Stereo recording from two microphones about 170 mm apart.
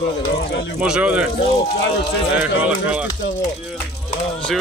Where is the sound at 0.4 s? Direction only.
80° left.